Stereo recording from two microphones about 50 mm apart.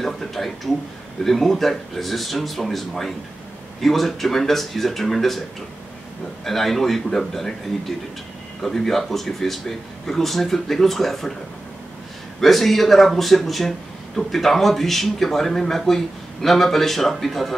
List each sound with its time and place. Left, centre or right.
0.0 s a sound: centre
1.2 s speech: centre
6.4 s speech: centre
8.6 s speech: centre
12.4 s speech: centre